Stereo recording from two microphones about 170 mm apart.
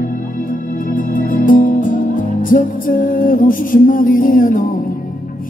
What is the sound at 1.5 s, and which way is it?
Music, 50° left (ahead or behind).